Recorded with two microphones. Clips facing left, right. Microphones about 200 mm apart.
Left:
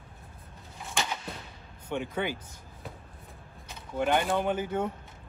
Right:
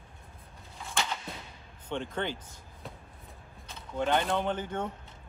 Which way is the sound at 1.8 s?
10° left (ahead or behind).